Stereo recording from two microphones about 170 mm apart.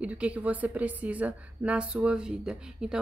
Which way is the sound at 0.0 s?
5° right (ahead or behind).